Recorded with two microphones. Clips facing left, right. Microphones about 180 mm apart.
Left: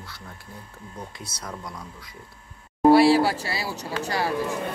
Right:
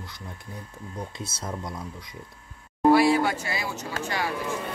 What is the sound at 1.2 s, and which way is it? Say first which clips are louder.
Speech: right 3 dB; 25° right (ahead or behind).